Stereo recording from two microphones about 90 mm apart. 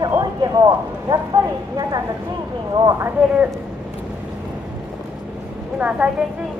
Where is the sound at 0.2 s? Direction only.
45° right (ahead or behind).